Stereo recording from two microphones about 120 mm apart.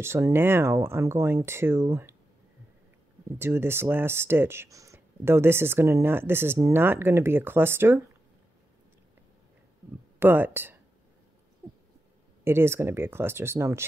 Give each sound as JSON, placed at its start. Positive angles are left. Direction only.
{"t": 0.0, "sound": "speech", "side_deg": -20}
{"t": 3.3, "sound": "speech", "side_deg": -20}
{"t": 10.1, "sound": "speech", "side_deg": -15}
{"t": 12.4, "sound": "speech", "side_deg": -20}